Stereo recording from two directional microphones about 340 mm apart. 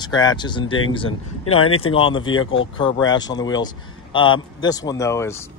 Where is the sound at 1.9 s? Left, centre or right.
Centre.